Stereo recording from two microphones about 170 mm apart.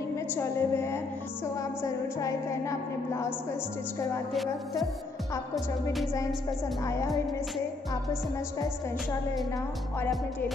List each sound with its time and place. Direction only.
0.1 s a woman's voice: 15° left (ahead or behind)
4.3 s speech: centre (ahead or behind)
6.8 s a woman's voice: 20° left (ahead or behind)
7.9 s music: 20° left (ahead or behind)